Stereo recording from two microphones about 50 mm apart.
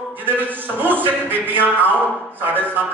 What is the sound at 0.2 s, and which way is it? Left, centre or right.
A man's voice, right.